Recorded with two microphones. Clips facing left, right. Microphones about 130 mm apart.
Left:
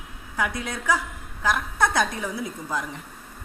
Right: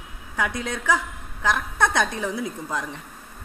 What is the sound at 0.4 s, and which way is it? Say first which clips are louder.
A woman's voice: right 1 dB; 20° right (ahead or behind).